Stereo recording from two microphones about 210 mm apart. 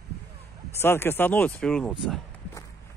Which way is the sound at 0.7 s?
10° left (ahead or behind).